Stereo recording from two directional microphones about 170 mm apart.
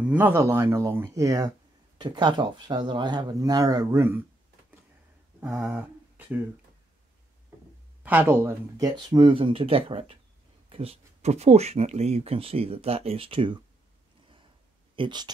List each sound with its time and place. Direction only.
0.0 s speech: 10° right (ahead or behind)
5.4 s speech: 10° right (ahead or behind)
8.0 s speech: 10° right (ahead or behind); by 13.6 s 30° right (ahead or behind)
15.0 s speech: 25° right (ahead or behind)